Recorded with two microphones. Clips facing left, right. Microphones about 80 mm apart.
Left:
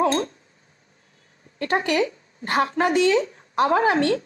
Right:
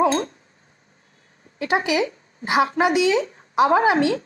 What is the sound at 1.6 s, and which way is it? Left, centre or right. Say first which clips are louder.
A woman's voice: right 1 dB; centre.